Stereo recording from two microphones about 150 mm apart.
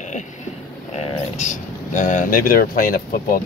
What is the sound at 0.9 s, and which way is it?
Speech, 50° left (ahead or behind).